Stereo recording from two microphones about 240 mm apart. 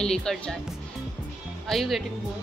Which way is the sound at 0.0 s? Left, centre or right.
Centre.